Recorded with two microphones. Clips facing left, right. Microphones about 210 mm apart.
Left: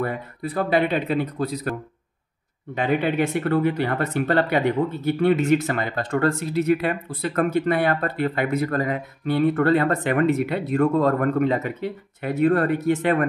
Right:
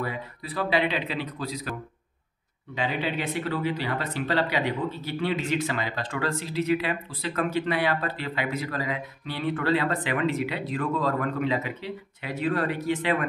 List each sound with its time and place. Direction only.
0.0 s speech: 50° left (ahead or behind)
2.7 s speech: 50° left (ahead or behind)